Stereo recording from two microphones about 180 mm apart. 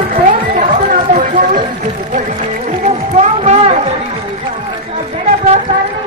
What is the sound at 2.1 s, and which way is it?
Music, 40° right (ahead or behind).